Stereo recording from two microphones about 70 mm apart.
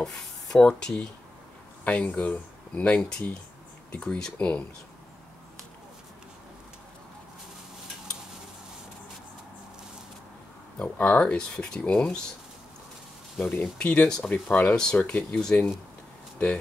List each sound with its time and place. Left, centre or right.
0.0 s speech: centre
1.9 s speech: left
10.8 s speech: centre
13.5 s speech: centre
14.3 s speech: left